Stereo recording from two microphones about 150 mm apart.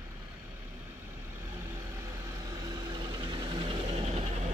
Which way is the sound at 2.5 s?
25° right (ahead or behind).